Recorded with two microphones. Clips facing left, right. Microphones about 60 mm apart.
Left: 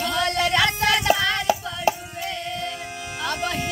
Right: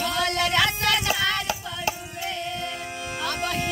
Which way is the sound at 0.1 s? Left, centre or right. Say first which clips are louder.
Left 2 dB; centre.